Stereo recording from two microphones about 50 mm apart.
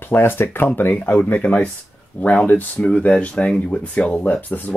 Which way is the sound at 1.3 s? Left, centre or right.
Left.